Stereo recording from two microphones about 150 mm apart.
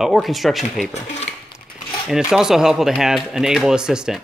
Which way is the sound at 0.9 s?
45° left (ahead or behind).